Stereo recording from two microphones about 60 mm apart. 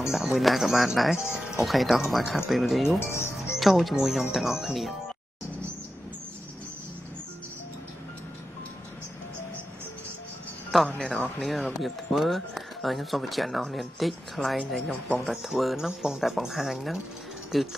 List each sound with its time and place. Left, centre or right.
0.1 s speech: centre
1.1 s speech: centre
1.7 s speech: centre
3.0 s speech: left
3.5 s speech: centre
10.9 s speech: centre